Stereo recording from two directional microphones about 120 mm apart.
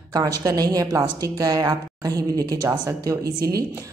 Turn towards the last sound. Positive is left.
turn(degrees=-30)  # may be behind; listen again after turning